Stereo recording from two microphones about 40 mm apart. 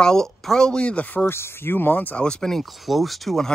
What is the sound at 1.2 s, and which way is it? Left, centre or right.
Speech, left.